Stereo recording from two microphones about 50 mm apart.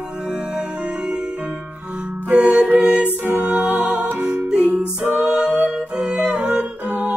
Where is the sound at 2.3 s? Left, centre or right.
Right.